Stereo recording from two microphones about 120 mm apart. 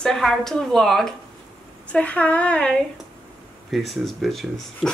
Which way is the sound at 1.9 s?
10° left (ahead or behind).